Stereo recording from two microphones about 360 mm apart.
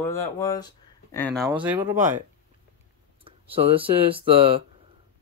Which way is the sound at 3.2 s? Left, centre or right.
Centre.